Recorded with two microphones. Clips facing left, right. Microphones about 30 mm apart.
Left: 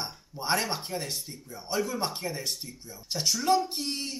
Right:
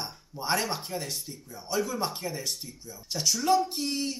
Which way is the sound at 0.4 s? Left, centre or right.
Centre.